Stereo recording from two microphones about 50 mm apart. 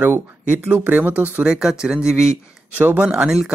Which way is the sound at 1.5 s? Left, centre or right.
Centre.